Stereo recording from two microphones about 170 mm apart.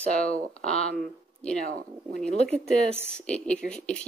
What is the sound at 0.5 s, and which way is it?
Speech, 40° left (ahead or behind).